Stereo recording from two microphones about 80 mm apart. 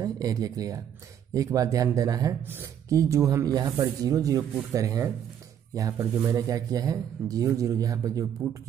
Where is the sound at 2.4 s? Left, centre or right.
Right.